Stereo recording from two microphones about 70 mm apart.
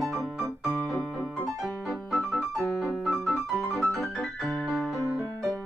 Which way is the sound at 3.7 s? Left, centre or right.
Left.